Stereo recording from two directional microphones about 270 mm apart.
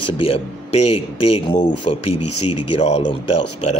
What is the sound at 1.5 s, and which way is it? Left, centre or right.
Speech, left.